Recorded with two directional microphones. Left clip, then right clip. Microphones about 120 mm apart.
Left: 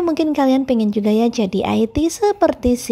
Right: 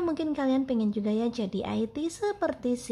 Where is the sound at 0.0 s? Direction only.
45° left (ahead or behind).